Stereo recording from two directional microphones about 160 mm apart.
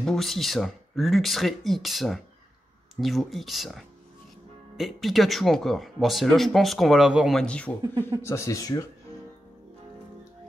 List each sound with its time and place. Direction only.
0.0 s speech: centre (ahead or behind)
8.2 s speech: 15° left (ahead or behind)